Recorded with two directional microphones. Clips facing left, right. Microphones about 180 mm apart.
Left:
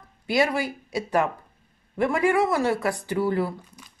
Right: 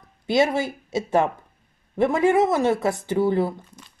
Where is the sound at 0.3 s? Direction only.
25° right (ahead or behind).